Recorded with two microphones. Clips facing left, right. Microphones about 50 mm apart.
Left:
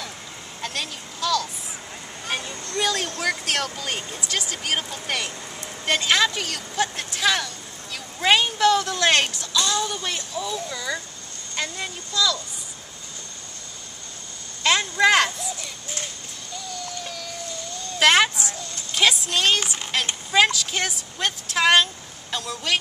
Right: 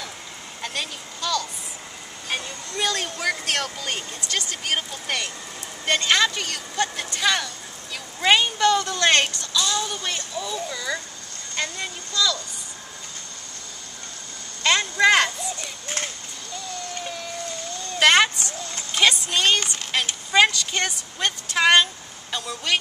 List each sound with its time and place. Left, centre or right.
0.6 s a sound: centre
2.8 s a sound: centre
3.2 s a woman's voice: centre
14.6 s speech: centre
17.0 s vehicle: right
17.9 s a woman's voice: centre